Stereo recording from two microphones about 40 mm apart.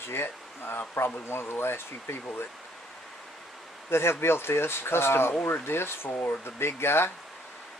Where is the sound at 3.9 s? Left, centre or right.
Left.